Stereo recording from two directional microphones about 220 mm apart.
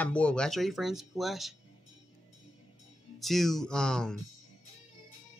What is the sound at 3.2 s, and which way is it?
Speech, centre (ahead or behind).